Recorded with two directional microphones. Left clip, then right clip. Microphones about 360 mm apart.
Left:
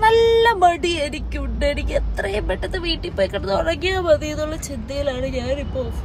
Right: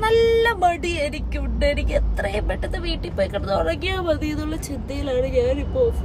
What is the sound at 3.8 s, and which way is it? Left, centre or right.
Speech, centre.